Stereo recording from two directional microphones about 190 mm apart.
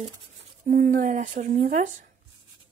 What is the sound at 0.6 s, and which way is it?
Speech, 45° right (ahead or behind).